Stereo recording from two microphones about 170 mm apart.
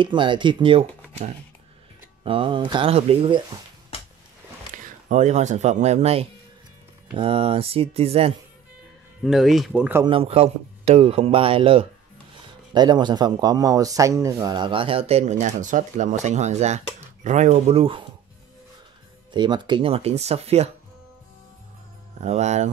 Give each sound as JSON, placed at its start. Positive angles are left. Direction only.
{"t": 0.0, "sound": "speech", "side_deg": -30}
{"t": 2.2, "sound": "speech", "side_deg": -30}
{"t": 4.8, "sound": "speech", "side_deg": -45}
{"t": 9.2, "sound": "speech", "side_deg": 0}
{"t": 10.0, "sound": "speech", "side_deg": -35}
{"t": 19.3, "sound": "speech", "side_deg": -25}
{"t": 22.2, "sound": "speech", "side_deg": -40}